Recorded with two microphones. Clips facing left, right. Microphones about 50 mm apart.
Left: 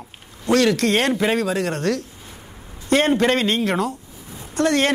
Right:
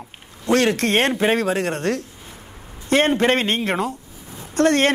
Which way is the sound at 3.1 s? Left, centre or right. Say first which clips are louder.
Even; right.